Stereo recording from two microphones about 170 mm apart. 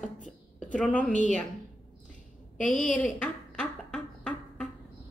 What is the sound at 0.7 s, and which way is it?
Speech, 5° left (ahead or behind).